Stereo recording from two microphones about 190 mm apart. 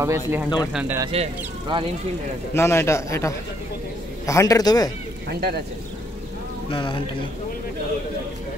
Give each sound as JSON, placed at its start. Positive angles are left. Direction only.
{"t": 0.0, "sound": "speech", "side_deg": -15}
{"t": 1.1, "sound": "speech", "side_deg": -30}
{"t": 2.5, "sound": "a man's voice", "side_deg": 15}
{"t": 5.3, "sound": "speech", "side_deg": -55}
{"t": 6.7, "sound": "a man's voice", "side_deg": 25}